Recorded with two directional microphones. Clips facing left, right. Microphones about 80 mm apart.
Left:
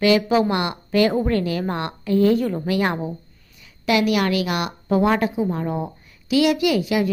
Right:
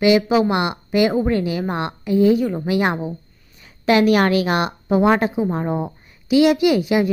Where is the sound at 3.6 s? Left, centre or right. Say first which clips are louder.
Right 4 dB; right.